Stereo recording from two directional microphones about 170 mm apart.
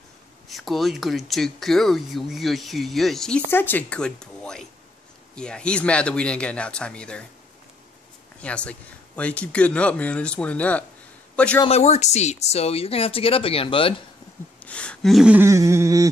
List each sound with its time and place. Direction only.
0.5 s speech: centre (ahead or behind)
8.4 s a man's voice: 5° left (ahead or behind)
11.6 s speech: 40° left (ahead or behind)
14.6 s speech: 5° left (ahead or behind)
15.4 s a sound: 15° right (ahead or behind)